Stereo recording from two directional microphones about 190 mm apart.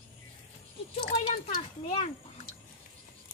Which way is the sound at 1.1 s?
25° left (ahead or behind).